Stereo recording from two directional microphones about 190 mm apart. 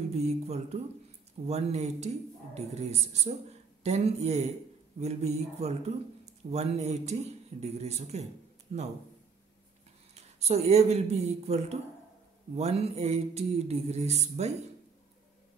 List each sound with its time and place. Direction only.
0.1 s a man's voice: 35° right (ahead or behind)
10.1 s a man's voice: 35° right (ahead or behind)